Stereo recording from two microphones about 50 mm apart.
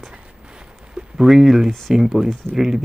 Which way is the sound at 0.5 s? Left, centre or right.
Centre.